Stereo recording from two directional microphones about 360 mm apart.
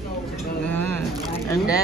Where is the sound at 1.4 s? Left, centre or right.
Centre.